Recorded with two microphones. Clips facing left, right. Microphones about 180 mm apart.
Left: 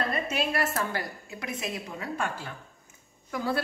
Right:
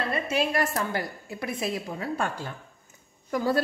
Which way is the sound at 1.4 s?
30° right (ahead or behind).